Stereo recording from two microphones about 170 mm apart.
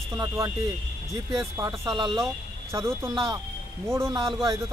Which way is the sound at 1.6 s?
25° right (ahead or behind).